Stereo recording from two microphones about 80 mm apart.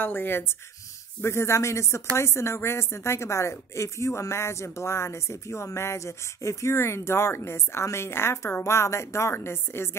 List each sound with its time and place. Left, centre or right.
0.0 s speech: left